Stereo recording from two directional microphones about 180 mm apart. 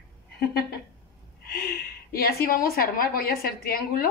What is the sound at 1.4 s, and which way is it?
A woman's voice, 60° left (ahead or behind).